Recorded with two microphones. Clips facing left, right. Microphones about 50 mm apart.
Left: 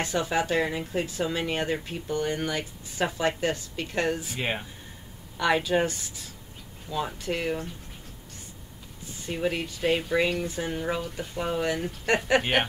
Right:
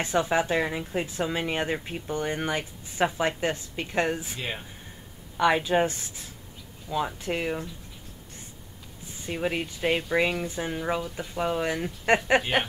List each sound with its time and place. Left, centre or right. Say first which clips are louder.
0.0 s speech: right 2 dB; right
4.4 s speech: left 4 dB; left
5.4 s speech: right 2 dB; right
6.9 s speech: right 1 dB; centre
9.3 s speech: even; centre
10.7 s speech: right 1 dB; centre
12.4 s a sound: left 1 dB; centre